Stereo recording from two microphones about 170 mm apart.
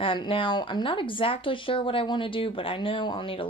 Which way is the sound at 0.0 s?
30° left (ahead or behind).